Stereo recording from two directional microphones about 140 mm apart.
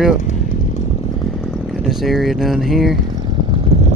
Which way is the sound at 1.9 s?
Centre (ahead or behind).